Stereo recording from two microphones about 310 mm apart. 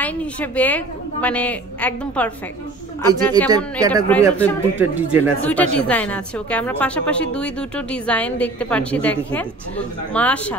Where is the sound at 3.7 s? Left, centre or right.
Centre.